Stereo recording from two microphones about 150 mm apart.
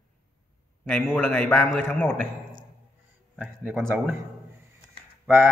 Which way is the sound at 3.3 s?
10° right (ahead or behind).